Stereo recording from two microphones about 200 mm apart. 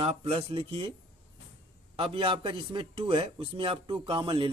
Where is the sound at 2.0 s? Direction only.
25° right (ahead or behind).